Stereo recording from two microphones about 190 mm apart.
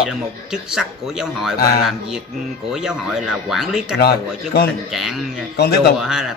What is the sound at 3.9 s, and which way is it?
Speech, 55° left (ahead or behind).